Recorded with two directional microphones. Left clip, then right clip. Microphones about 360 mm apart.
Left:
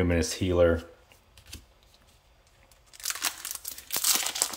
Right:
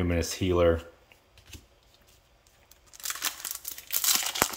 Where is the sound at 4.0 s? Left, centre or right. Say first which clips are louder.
Right 2 dB; centre.